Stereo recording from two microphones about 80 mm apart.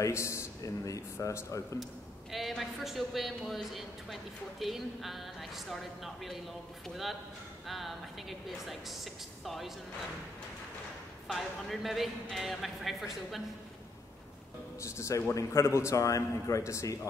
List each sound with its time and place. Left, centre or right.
0.0 s a man's voice: left
2.3 s a man's voice: centre
7.6 s a man's voice: centre
11.2 s a man's voice: centre
14.8 s a man's voice: left